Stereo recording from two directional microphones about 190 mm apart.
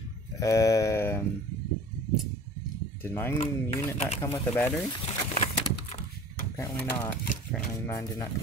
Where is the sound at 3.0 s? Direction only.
10° left (ahead or behind).